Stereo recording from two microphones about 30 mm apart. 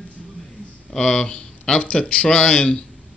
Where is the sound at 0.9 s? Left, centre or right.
Left.